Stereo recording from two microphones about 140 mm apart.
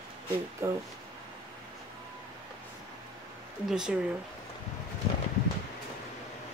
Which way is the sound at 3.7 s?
5° right (ahead or behind).